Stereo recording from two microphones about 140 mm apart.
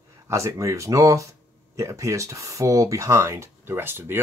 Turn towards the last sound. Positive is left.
turn(degrees=-15)  # may be behind; listen again after turning